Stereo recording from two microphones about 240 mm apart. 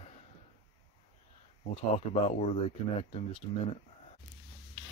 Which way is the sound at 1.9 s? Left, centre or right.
Left.